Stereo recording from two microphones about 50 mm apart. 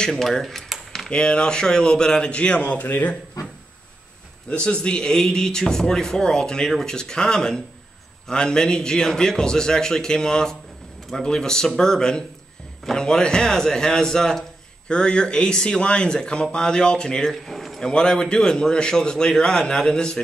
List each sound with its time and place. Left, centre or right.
0.1 s a sound: centre
1.1 s a man's voice: centre
4.5 s speech: left
17.3 s speech: centre